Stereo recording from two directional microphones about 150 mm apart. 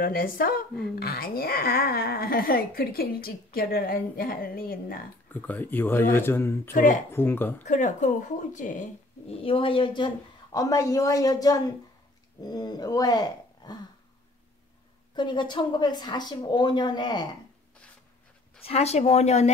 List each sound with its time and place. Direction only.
0.0 s a woman's voice: 75° left (ahead or behind)
5.3 s speech: 10° left (ahead or behind)
6.7 s speech: 65° left (ahead or behind)
7.1 s speech: 15° left (ahead or behind)
7.6 s speech: 55° left (ahead or behind)
9.3 s a woman's voice: 35° left (ahead or behind)
15.1 s a woman's voice: 30° left (ahead or behind)
18.6 s speech: 45° left (ahead or behind)